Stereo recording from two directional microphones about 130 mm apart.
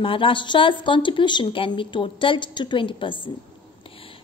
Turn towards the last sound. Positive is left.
turn(degrees=40)  # may be behind; listen again after turning